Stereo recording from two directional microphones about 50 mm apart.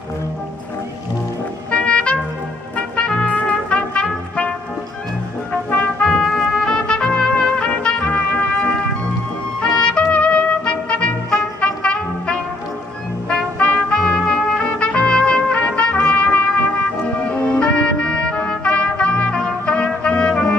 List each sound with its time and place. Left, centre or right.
1.7 s music: left
3.3 s trumpet: left
6.0 s music: centre
6.6 s trumpet: centre
13.9 s trumpet: centre